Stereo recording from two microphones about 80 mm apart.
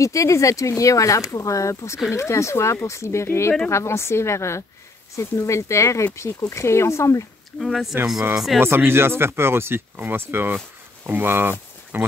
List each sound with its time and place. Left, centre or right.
0.0 s speech: left
7.5 s speech: centre
8.5 s speech: right